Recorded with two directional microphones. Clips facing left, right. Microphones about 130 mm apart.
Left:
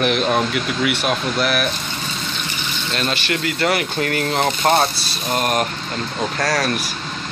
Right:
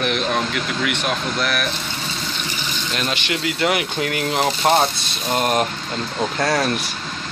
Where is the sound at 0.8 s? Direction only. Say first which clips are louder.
Left 3 dB; 5° left (ahead or behind).